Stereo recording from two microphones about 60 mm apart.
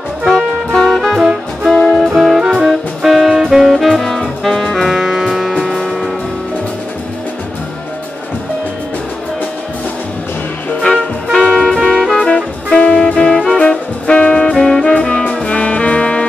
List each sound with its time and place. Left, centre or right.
0.4 s music: centre
1.2 s music: centre
1.7 s music: centre
2.0 s music: centre
5.6 s music: centre
11.3 s music: centre